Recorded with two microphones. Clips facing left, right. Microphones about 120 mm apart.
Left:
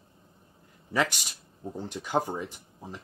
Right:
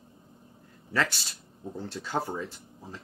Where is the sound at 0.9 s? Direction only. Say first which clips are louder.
Left 2 dB; 15° left (ahead or behind).